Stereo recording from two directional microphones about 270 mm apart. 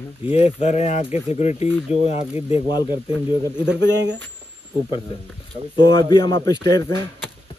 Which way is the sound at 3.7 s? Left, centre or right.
Right.